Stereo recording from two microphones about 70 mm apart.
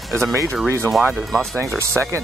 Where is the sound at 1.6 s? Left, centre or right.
Right.